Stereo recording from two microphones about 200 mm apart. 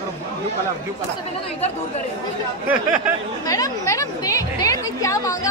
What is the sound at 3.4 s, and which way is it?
A woman's voice, 15° left (ahead or behind).